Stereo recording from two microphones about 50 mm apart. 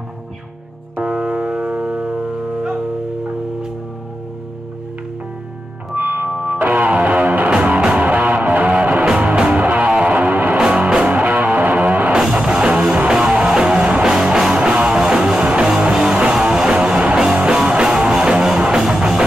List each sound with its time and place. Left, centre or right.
1.0 s a sound: centre
5.9 s music: right
10.6 s music: centre